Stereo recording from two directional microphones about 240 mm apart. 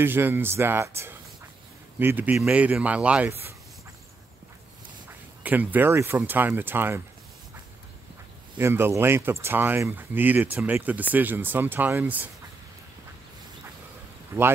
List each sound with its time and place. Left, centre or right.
0.0 s speech: centre
5.4 s speech: centre
8.5 s speech: centre
14.3 s speech: centre